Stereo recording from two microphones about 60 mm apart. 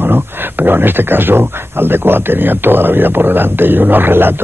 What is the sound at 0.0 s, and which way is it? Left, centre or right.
Speech, right.